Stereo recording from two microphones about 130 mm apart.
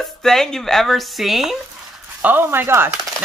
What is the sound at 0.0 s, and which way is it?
Speech, 5° left (ahead or behind).